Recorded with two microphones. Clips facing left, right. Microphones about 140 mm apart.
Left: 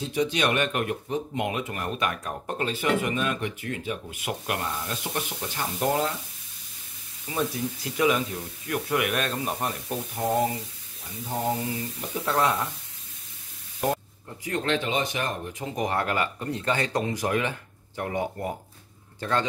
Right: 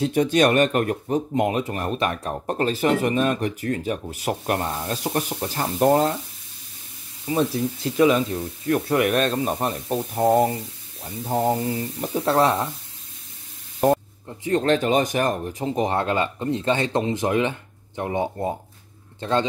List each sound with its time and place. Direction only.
0.0 s speech: 50° right (ahead or behind)
7.2 s speech: 25° right (ahead or behind)
13.8 s speech: 40° right (ahead or behind)
15.6 s a man's voice: 30° right (ahead or behind)